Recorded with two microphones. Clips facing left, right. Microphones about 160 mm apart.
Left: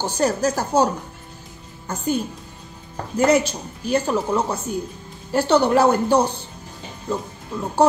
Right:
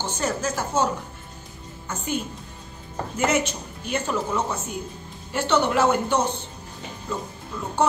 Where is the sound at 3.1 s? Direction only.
35° left (ahead or behind).